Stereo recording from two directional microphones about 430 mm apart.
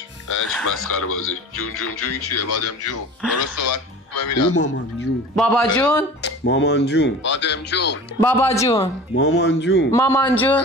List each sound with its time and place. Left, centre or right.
0.8 s speech: left
5.3 s a man's voice: centre
6.2 s speech: left
8.2 s speech: centre
9.1 s speech: left
9.8 s a man's voice: centre